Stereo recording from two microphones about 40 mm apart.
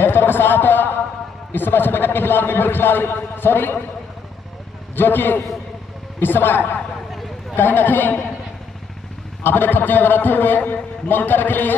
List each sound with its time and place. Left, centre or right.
0.0 s a man's voice: left
4.9 s a man's voice: left
7.5 s a man's voice: left
9.4 s a man's voice: left